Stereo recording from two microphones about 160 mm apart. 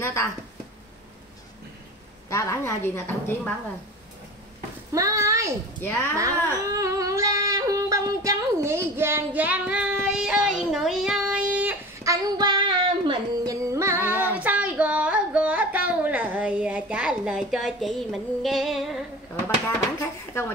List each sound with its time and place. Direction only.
0.0 s speech: 15° left (ahead or behind)
2.2 s a woman's voice: 20° left (ahead or behind)
4.9 s speech: 20° right (ahead or behind)
5.8 s a woman's voice: 15° left (ahead or behind)
6.1 s yodeling: 20° right (ahead or behind)
13.7 s music: 15° right (ahead or behind)
14.3 s a sound: 10° right (ahead or behind)
20.0 s a woman's voice: 15° left (ahead or behind)